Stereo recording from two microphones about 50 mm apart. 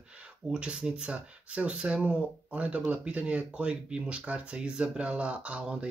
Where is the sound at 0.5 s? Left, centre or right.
Centre.